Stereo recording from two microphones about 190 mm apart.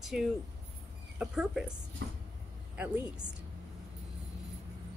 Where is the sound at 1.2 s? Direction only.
Centre (ahead or behind).